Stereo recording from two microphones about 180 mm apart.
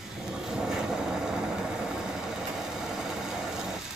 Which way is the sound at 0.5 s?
5° right (ahead or behind).